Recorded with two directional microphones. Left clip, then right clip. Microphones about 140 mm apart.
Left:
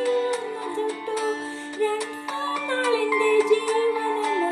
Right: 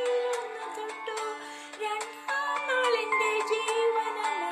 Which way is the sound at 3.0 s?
40° left (ahead or behind).